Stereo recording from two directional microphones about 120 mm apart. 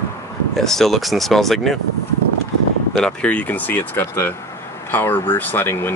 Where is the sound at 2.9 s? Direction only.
10° left (ahead or behind).